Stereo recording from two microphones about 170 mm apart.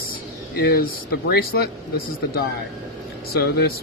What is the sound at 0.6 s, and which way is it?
Speech, 65° left (ahead or behind).